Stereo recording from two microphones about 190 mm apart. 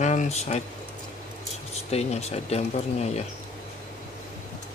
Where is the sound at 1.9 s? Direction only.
35° left (ahead or behind).